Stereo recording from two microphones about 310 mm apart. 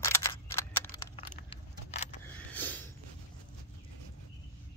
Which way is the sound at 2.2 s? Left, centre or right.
Centre.